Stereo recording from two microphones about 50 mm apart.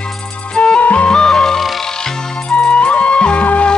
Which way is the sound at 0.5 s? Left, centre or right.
Left.